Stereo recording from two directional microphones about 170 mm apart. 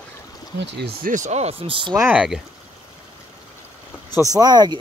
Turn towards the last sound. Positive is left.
turn(degrees=-25)  # may be behind; listen again after turning